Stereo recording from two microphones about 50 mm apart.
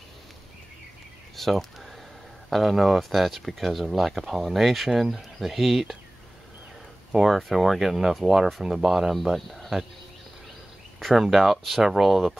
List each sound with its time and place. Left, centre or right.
1.3 s speech: centre
7.1 s speech: centre
11.0 s speech: centre